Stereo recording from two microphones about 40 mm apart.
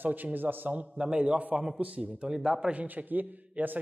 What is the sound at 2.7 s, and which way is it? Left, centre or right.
A man's voice, right.